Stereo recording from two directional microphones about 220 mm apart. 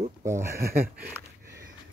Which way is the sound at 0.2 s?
10° right (ahead or behind).